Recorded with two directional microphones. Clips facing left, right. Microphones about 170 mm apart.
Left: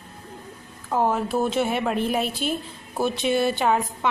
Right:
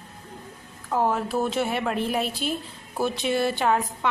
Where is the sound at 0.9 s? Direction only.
15° left (ahead or behind).